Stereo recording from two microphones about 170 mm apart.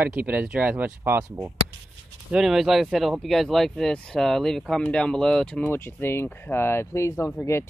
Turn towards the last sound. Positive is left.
turn(degrees=15)  # may be behind; listen again after turning